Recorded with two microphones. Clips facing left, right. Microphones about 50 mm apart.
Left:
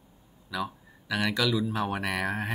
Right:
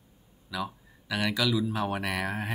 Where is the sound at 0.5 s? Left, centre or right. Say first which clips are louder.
Left 1 dB; centre.